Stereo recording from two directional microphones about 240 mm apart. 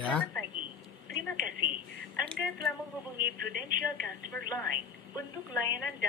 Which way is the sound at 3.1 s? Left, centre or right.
Right.